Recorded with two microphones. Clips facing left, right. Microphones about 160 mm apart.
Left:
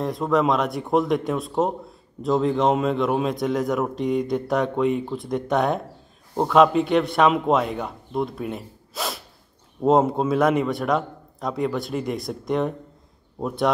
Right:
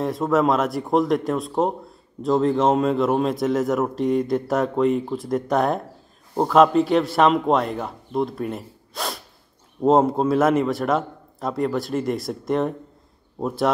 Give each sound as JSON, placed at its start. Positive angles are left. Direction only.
{"t": 0.0, "sound": "speech", "side_deg": 0}